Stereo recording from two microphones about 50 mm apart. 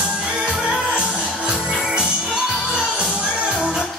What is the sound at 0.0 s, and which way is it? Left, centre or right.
Music, centre.